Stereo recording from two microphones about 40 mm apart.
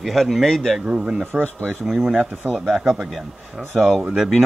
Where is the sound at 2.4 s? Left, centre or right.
Right.